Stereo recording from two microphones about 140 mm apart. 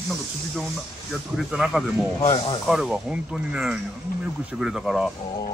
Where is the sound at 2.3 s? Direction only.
40° left (ahead or behind).